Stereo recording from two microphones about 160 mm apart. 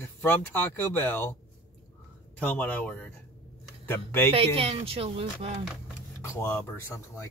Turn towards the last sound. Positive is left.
turn(degrees=15)  # may be behind; listen again after turning